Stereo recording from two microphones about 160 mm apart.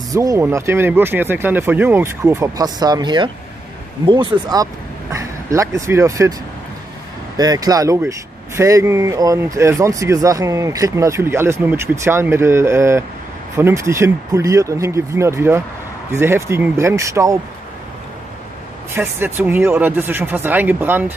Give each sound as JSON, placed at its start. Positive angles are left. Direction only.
{"t": 0.1, "sound": "speech", "side_deg": -20}
{"t": 7.3, "sound": "speech", "side_deg": -25}
{"t": 18.9, "sound": "speech", "side_deg": -15}